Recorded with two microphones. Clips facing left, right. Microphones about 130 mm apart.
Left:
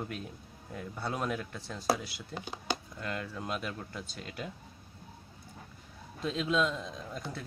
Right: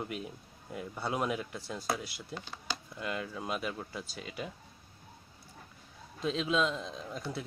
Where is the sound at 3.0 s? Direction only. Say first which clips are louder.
Right 1 dB; 5° right (ahead or behind).